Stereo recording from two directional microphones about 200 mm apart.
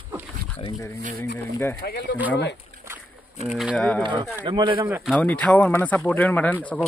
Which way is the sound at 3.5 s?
Centre (ahead or behind).